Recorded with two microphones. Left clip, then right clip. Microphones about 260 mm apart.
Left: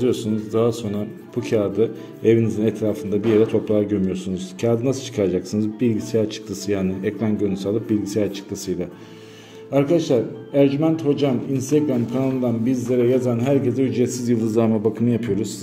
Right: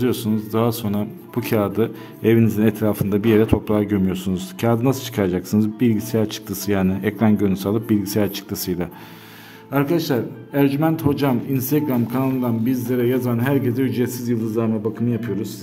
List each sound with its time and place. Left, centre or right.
0.0 s speech: right
14.2 s speech: centre